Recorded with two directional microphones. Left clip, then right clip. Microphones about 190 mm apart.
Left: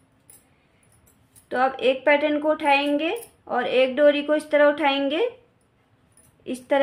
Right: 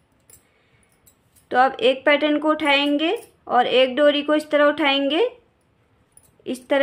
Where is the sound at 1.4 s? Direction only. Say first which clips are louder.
Right 4 dB; 35° right (ahead or behind).